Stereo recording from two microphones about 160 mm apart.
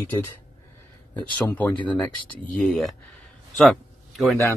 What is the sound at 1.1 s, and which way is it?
Speech, 10° left (ahead or behind).